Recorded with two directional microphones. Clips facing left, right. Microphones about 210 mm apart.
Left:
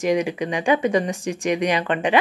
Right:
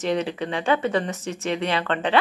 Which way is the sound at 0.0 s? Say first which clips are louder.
Left 3 dB; 10° left (ahead or behind).